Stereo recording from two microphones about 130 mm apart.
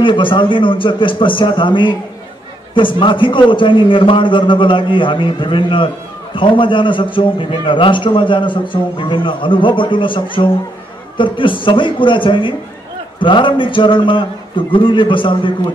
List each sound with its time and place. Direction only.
0.0 s a man's voice: 40° left (ahead or behind)